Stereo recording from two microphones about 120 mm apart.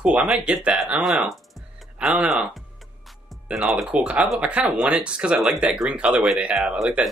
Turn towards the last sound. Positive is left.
turn(degrees=-10)  # may be behind; listen again after turning